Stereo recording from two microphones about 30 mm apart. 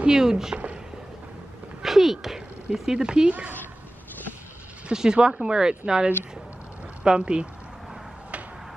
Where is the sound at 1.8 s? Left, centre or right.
Centre.